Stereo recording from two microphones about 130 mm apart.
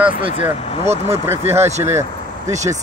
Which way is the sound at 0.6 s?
50° left (ahead or behind).